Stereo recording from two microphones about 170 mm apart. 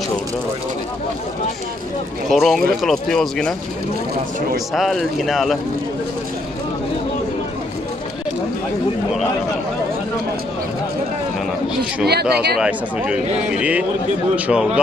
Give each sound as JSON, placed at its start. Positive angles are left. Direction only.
{"t": 2.2, "sound": "speech", "side_deg": 0}
{"t": 4.7, "sound": "speech", "side_deg": 0}
{"t": 12.1, "sound": "speech", "side_deg": -70}
{"t": 12.5, "sound": "speech", "side_deg": -5}